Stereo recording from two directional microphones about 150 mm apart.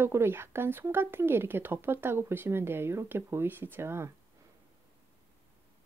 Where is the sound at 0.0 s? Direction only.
15° right (ahead or behind).